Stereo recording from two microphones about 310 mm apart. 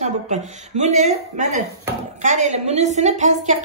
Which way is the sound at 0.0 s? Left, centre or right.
Right.